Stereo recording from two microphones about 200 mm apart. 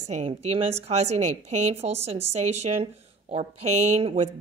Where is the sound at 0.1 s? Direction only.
30° right (ahead or behind).